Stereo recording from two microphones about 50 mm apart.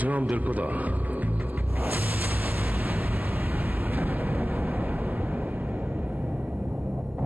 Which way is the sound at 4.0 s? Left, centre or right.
Right.